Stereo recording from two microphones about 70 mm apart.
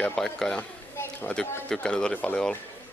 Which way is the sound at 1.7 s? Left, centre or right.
Centre.